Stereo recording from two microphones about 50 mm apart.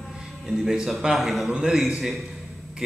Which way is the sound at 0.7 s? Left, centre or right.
Centre.